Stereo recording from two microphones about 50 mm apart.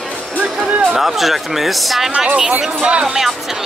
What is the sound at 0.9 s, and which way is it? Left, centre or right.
Speech, centre.